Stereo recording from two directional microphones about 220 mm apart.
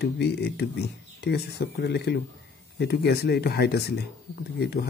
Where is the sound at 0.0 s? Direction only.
50° left (ahead or behind).